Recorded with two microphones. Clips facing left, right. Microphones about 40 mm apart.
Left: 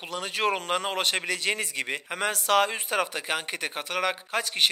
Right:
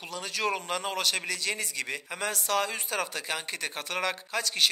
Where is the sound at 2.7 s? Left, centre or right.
Left.